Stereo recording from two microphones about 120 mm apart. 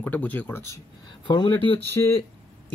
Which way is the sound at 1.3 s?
40° left (ahead or behind).